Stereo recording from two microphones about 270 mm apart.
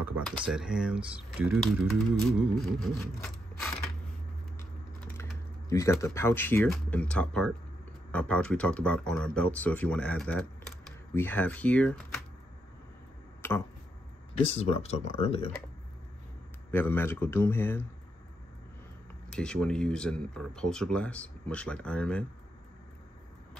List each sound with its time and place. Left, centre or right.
0.0 s speech: centre
5.7 s speech: centre
13.4 s a sound: centre
14.5 s speech: left
16.7 s speech: centre
19.3 s speech: centre